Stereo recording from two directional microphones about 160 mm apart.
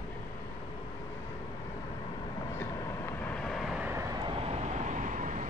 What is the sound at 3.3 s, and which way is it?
Vehicle, 5° left (ahead or behind).